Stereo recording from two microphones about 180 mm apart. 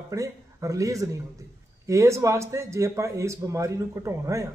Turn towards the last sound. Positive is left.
turn(degrees=-15)  # may be behind; listen again after turning